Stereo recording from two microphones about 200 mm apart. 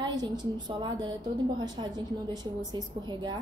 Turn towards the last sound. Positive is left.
turn(degrees=-20)  # may be behind; listen again after turning